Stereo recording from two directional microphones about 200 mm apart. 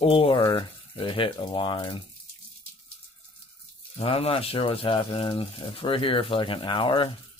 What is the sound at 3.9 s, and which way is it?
Speech, 30° left (ahead or behind).